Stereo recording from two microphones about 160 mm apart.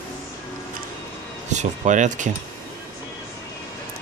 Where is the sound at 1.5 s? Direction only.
50° right (ahead or behind).